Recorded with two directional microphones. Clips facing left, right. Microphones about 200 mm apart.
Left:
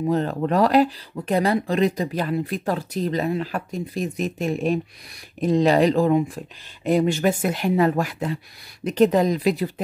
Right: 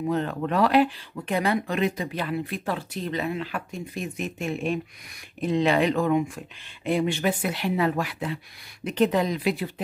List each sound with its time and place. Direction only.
0.0 s speech: 35° left (ahead or behind)